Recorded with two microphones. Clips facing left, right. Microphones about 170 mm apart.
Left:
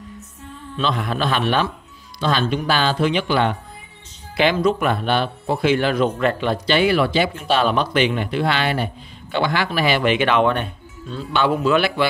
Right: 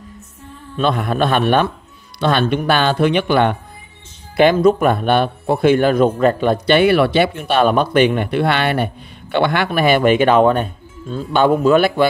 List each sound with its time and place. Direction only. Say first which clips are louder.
0.7 s speech: right 5 dB; 50° right (ahead or behind)